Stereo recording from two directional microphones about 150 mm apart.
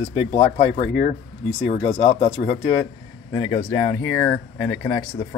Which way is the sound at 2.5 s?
60° left (ahead or behind).